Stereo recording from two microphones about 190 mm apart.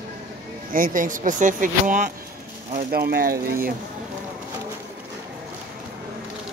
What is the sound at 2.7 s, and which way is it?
Speech, 55° right (ahead or behind).